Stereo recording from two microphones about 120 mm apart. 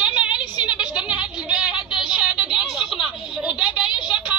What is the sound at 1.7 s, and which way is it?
Child singing, 40° left (ahead or behind).